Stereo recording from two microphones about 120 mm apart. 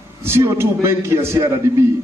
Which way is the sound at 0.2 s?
20° right (ahead or behind).